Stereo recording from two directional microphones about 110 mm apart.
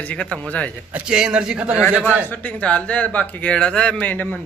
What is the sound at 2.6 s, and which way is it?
Speech, 10° left (ahead or behind).